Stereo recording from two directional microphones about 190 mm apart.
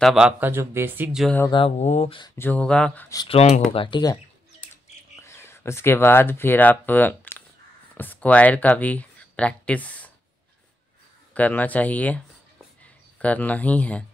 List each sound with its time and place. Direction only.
0.0 s speech: 5° right (ahead or behind)
1.2 s speech: 10° left (ahead or behind)
1.5 s speech: 30° left (ahead or behind)
2.3 s speech: 10° left (ahead or behind)
3.1 s speech: 20° left (ahead or behind)
3.3 s speech: 35° left (ahead or behind)
5.2 s speech: 15° left (ahead or behind)
11.3 s speech: 10° left (ahead or behind)
13.2 s speech: 10° left (ahead or behind)